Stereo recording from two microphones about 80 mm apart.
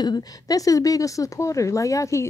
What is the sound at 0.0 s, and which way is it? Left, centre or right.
A woman's voice, left.